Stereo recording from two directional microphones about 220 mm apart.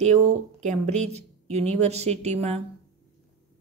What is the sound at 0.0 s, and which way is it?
A woman's voice, 30° right (ahead or behind).